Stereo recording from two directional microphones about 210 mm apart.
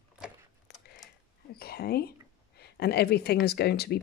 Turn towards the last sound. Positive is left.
turn(degrees=50)  # may be behind; listen again after turning